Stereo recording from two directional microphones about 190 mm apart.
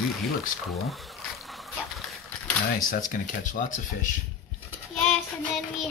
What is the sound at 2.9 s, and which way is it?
Speech, 45° left (ahead or behind).